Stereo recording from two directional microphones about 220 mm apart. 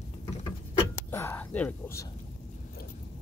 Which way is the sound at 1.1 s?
10° left (ahead or behind).